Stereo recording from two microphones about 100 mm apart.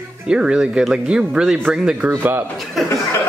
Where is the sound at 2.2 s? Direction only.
20° right (ahead or behind).